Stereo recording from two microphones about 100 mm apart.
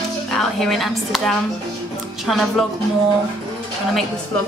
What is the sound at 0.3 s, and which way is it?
A woman's voice, 5° left (ahead or behind).